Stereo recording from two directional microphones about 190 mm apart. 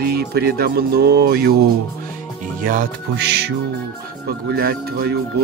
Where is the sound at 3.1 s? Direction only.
60° right (ahead or behind).